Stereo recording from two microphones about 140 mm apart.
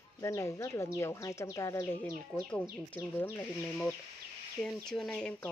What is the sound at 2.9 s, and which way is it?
Speech, 10° left (ahead or behind).